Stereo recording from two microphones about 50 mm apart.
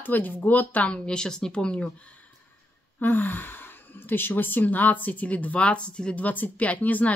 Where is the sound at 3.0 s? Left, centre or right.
Left.